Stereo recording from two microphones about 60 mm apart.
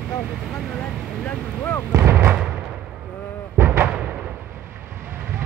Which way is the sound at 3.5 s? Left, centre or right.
Right.